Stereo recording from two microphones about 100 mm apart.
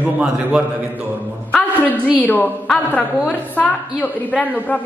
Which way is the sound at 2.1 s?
20° left (ahead or behind).